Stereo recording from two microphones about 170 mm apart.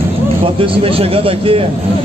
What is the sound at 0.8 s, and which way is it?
Speech, 35° right (ahead or behind).